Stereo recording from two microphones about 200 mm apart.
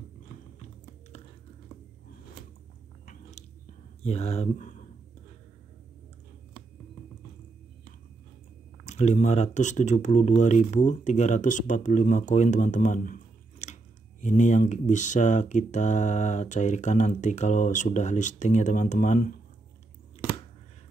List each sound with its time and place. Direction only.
3.1 s biting: 30° left (ahead or behind)
4.0 s speech: 30° left (ahead or behind)
8.8 s speech: 35° left (ahead or behind)